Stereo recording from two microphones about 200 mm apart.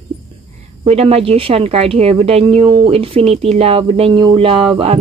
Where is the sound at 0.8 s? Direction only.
30° right (ahead or behind).